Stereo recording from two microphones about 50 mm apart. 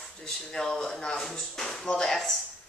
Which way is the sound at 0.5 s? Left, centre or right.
Centre.